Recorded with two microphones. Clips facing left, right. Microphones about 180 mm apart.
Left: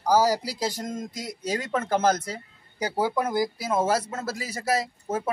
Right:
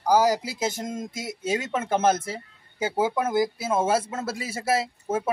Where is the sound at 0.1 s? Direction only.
15° right (ahead or behind).